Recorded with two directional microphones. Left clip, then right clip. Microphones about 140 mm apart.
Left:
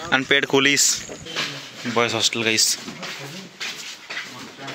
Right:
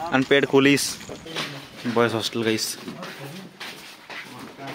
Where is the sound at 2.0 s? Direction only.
30° right (ahead or behind).